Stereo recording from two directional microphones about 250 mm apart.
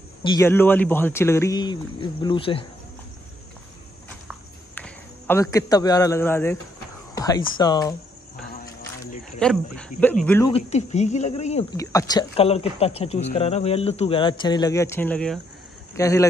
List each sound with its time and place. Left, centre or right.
0.2 s speech: centre
4.7 s a man's voice: centre
9.4 s speech: centre
10.5 s speech: left
11.7 s speech: centre